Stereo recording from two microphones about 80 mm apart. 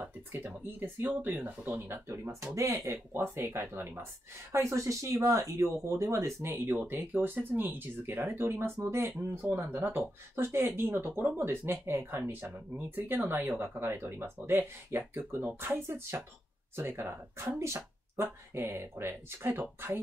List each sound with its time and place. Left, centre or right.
0.0 s a woman's voice: right
2.8 s a woman's voice: right
6.1 s a woman's voice: right